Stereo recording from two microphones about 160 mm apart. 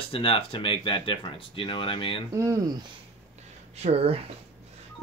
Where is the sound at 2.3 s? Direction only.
20° right (ahead or behind).